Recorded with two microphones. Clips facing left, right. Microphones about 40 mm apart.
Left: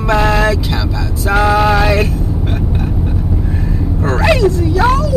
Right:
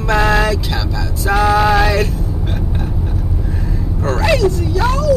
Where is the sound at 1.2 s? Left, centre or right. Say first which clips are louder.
Left 1 dB; centre.